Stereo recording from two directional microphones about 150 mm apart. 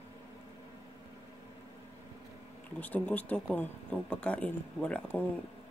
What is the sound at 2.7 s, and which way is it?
Speech, 10° left (ahead or behind).